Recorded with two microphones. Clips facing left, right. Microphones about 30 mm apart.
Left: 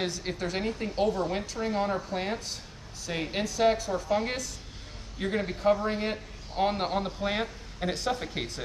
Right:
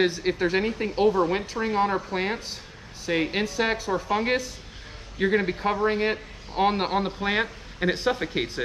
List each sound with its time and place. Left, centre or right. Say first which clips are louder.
0.0 s a man's voice: right 9 dB; right